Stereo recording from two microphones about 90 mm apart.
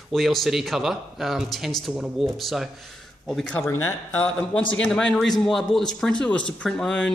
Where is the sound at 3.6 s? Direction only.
30° left (ahead or behind).